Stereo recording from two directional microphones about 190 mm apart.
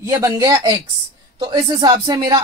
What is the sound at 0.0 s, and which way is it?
A woman's voice, 15° right (ahead or behind).